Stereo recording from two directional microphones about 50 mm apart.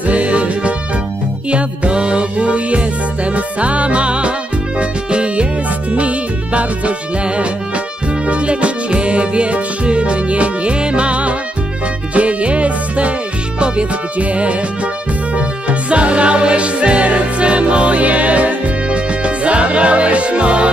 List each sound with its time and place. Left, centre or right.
0.1 s music: right
8.3 s music: right